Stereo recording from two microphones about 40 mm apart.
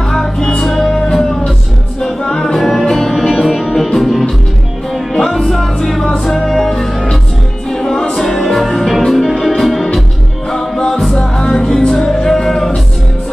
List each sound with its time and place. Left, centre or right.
0.1 s music: centre
7.7 s music: centre
10.5 s music: centre